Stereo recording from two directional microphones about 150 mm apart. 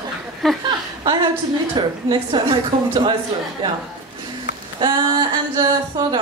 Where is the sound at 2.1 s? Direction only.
30° right (ahead or behind).